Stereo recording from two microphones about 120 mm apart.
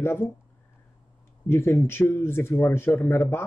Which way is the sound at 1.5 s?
20° left (ahead or behind).